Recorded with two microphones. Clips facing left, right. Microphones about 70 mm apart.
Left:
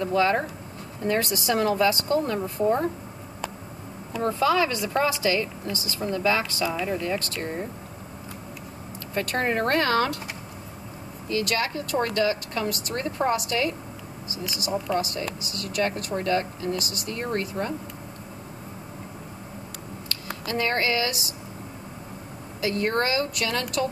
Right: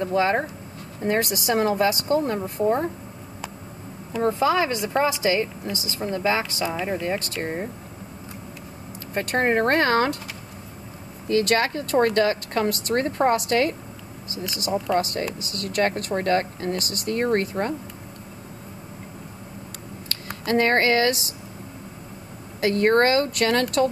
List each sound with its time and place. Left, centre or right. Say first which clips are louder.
0.0 s a woman's voice: right 1 dB; right
4.2 s a woman's voice: right 2 dB; right
9.1 s speech: right 4 dB; right
11.2 s speech: right 5 dB; right
14.9 s speech: right 3 dB; right
20.4 s speech: right 6 dB; right
22.6 s speech: right 6 dB; right